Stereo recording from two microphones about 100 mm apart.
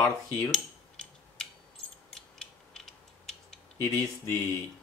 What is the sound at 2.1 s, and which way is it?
Mechanisms, 5° left (ahead or behind).